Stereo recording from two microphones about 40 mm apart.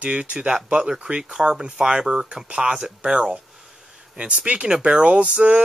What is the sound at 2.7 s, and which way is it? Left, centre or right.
Speech, centre.